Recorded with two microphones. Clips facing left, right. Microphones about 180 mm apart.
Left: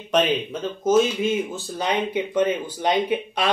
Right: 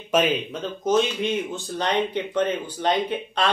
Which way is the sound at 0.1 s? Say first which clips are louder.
Left 1 dB; 5° right (ahead or behind).